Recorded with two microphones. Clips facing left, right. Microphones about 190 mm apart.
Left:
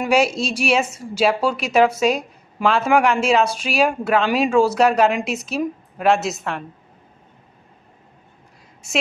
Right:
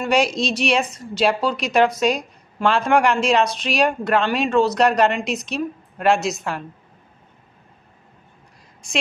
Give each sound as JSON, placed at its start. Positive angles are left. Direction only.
{"t": 0.0, "sound": "a woman's voice", "side_deg": 5}